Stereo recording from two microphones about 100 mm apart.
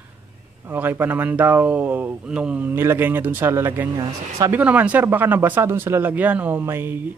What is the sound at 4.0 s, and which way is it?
Speech, 35° right (ahead or behind).